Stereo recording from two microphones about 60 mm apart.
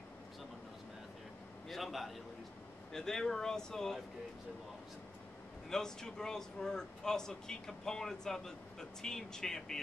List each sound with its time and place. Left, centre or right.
1.7 s a man's voice: centre
5.7 s speech: centre